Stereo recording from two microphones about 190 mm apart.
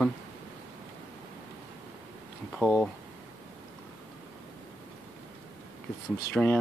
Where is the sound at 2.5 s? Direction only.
Centre (ahead or behind).